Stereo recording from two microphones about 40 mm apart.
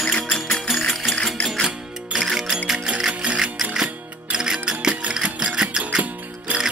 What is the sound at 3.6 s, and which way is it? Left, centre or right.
Music, centre.